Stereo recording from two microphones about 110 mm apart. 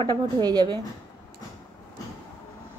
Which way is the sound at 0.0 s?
40° right (ahead or behind).